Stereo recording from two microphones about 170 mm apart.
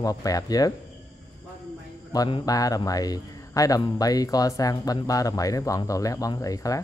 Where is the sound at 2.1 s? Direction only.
20° left (ahead or behind).